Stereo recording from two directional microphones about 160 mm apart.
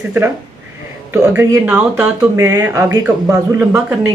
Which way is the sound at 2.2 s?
20° right (ahead or behind).